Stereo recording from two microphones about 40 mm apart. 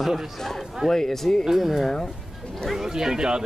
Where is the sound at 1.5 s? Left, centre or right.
Centre.